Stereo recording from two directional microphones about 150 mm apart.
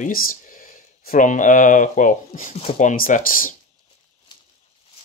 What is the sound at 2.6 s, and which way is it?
Speech, 40° left (ahead or behind).